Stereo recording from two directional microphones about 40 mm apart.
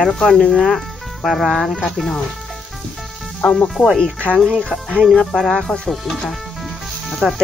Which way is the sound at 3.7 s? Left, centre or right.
Centre.